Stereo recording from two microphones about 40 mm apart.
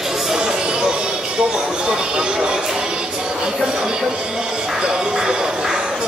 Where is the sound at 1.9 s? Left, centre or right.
Right.